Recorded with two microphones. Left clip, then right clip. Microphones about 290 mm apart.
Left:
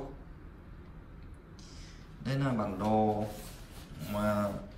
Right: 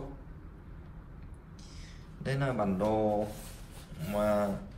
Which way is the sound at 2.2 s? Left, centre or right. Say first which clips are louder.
Right 2 dB; centre.